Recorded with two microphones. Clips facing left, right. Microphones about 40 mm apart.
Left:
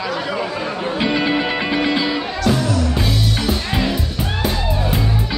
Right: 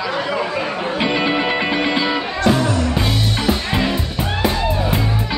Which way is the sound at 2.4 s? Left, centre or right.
Right.